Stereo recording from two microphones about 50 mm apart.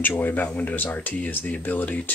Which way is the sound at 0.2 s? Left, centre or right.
Left.